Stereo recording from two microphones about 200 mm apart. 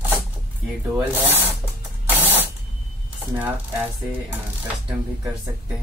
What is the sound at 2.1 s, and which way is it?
Spray, 10° right (ahead or behind).